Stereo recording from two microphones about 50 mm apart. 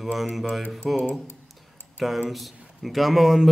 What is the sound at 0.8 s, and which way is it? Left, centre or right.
Speech, centre.